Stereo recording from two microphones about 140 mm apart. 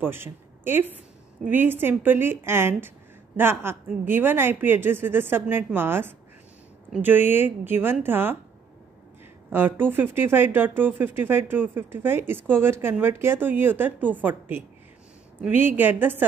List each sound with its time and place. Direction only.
0.0 s speech: 15° right (ahead or behind)
9.5 s speech: 15° right (ahead or behind)